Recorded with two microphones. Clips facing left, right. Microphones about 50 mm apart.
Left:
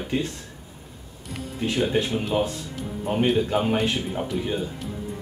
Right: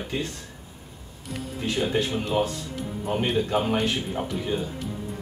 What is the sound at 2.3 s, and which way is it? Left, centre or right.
Speech, centre.